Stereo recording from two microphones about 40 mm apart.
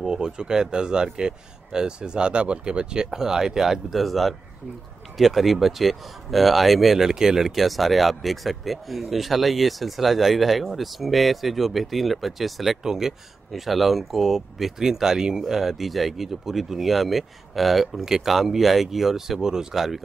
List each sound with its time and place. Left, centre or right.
0.0 s speech: centre
13.5 s speech: centre